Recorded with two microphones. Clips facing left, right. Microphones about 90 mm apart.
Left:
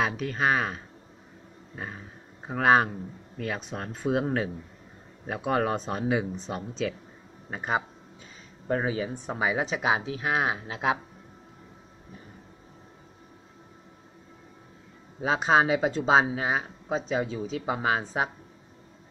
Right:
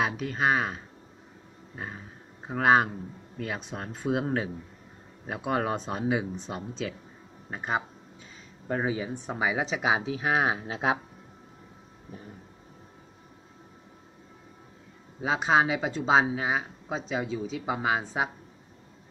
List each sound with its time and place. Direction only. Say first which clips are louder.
0.0 s speech: even; 10° right (ahead or behind)
7.5 s speech: left 1 dB; 5° left (ahead or behind)
9.8 s speech: right 1 dB; 15° right (ahead or behind)
15.2 s speech: left 1 dB; centre (ahead or behind)